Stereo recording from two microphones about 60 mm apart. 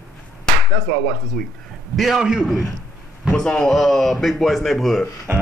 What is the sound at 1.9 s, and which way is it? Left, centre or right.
Speech, centre.